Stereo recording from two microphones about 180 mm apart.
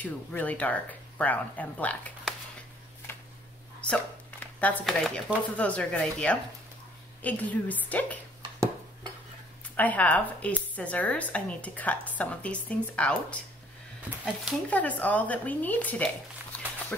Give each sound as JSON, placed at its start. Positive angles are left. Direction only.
{"t": 0.0, "sound": "speech", "side_deg": 10}
{"t": 3.1, "sound": "a sound", "side_deg": 15}
{"t": 3.8, "sound": "speech", "side_deg": 5}
{"t": 9.8, "sound": "speech", "side_deg": 10}
{"t": 14.0, "sound": "speech", "side_deg": -5}
{"t": 14.7, "sound": "speech", "side_deg": 10}